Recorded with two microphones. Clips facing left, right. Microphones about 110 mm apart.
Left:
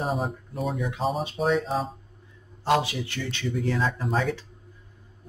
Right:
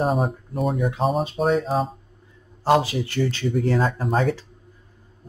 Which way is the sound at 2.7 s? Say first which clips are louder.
Right 5 dB; 35° right (ahead or behind).